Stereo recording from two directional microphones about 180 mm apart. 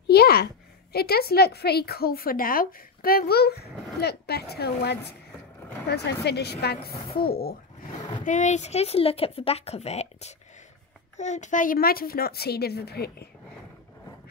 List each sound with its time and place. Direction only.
0.0 s a sound: 60° left (ahead or behind)
0.9 s a woman's voice: 60° left (ahead or behind)
8.2 s a woman's voice: 45° left (ahead or behind); by 13.3 s 60° left (ahead or behind)